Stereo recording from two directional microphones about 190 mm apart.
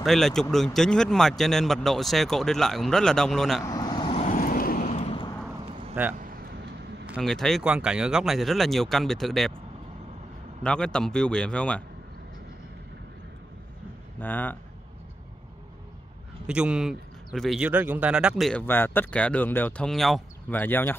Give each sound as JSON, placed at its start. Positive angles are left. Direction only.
{"t": 0.0, "sound": "speech", "side_deg": 0}
{"t": 3.6, "sound": "vehicle", "side_deg": 20}
{"t": 4.3, "sound": "vehicle", "side_deg": 50}
{"t": 6.1, "sound": "vehicle", "side_deg": -50}
{"t": 7.1, "sound": "speech", "side_deg": 0}
{"t": 10.6, "sound": "speech", "side_deg": 5}
{"t": 14.2, "sound": "speech", "side_deg": 10}
{"t": 16.4, "sound": "speech", "side_deg": -5}
{"t": 18.7, "sound": "speech", "side_deg": 10}